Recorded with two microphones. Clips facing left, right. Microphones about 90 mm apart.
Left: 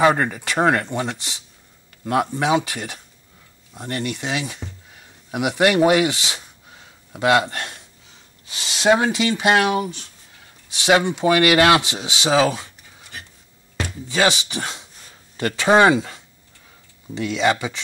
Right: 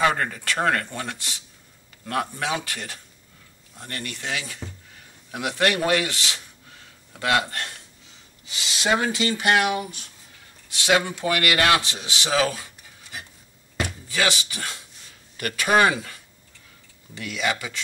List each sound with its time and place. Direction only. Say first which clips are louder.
0.0 s speech: left 5 dB; 20° left (ahead or behind)
13.8 s speech: left 6 dB; 20° left (ahead or behind)